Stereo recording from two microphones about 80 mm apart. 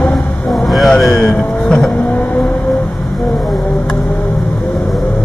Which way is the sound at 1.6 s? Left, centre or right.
Centre.